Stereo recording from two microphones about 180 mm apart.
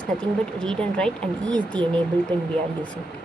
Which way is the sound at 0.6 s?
5° left (ahead or behind).